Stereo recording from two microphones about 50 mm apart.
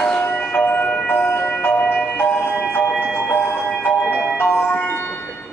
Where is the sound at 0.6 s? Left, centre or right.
Left.